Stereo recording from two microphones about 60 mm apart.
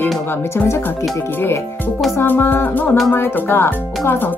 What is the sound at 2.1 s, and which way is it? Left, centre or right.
Speech, left.